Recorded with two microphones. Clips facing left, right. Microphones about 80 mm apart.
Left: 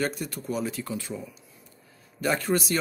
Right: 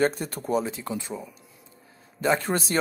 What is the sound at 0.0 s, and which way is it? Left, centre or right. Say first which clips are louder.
Speech: right 5 dB; right.